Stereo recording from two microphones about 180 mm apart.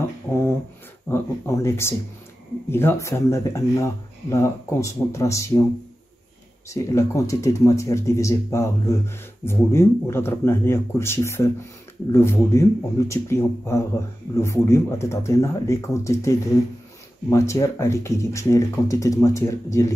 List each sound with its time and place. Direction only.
0.3 s a sound: 15° left (ahead or behind)
2.7 s speech: 15° left (ahead or behind)
6.7 s speech: 15° left (ahead or behind)